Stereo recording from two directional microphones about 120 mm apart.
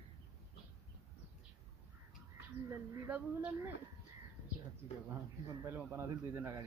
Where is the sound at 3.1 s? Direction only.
15° right (ahead or behind).